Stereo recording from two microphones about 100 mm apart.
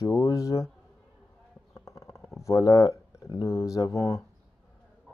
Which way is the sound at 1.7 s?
30° left (ahead or behind).